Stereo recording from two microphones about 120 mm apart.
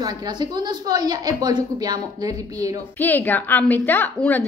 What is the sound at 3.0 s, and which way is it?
A woman's voice, 15° left (ahead or behind).